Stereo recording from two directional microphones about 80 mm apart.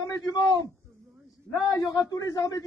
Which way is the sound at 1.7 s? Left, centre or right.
Left.